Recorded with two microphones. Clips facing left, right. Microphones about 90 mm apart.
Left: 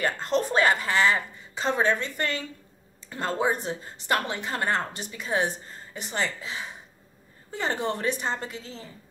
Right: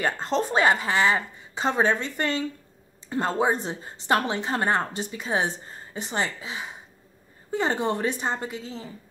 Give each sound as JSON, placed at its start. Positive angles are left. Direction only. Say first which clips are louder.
{"t": 0.0, "sound": "a woman's voice", "louder": "right 1 dB", "side_deg": -20}